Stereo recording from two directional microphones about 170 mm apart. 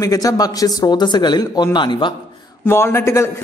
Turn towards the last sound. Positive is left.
turn(degrees=15)  # may be behind; listen again after turning